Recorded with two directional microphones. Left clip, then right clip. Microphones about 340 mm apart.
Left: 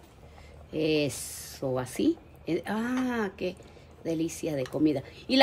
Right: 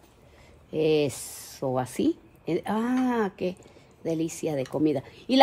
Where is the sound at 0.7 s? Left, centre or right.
Centre.